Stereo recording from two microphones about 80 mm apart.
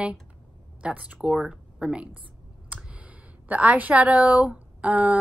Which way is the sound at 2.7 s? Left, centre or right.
Centre.